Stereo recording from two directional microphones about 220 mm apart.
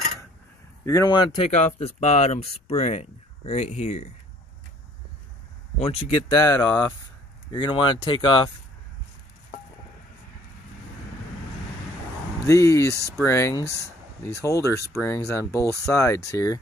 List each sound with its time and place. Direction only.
0.8 s speech: 15° left (ahead or behind)
5.8 s speech: 25° left (ahead or behind)
12.4 s speech: 15° left (ahead or behind)